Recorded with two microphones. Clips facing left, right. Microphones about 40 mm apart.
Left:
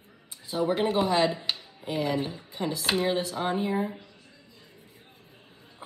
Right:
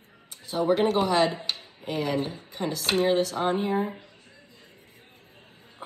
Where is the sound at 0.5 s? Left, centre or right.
Right.